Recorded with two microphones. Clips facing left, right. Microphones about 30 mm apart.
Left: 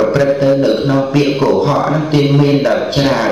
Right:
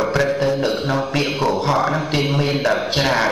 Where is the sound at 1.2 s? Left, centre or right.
Centre.